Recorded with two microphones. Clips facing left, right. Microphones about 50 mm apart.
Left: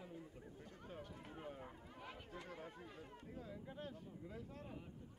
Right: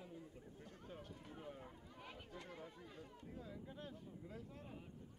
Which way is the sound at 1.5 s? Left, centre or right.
Centre.